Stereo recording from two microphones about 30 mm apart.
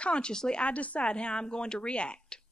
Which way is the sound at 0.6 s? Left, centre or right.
Left.